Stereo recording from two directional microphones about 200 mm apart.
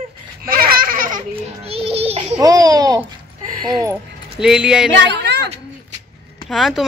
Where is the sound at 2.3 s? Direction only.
20° right (ahead or behind).